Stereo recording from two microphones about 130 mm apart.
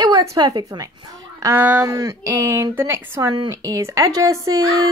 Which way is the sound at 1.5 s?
10° right (ahead or behind).